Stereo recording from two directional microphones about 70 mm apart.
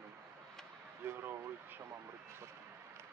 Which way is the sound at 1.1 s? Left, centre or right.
Right.